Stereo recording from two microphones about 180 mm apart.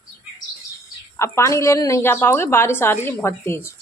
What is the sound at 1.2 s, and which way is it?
A woman's voice, 15° left (ahead or behind).